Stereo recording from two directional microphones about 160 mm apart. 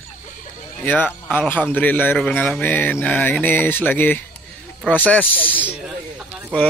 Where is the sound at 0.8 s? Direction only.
10° left (ahead or behind).